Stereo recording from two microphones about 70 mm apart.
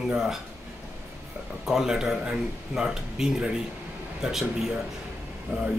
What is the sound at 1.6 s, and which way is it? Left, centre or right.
Speech, centre.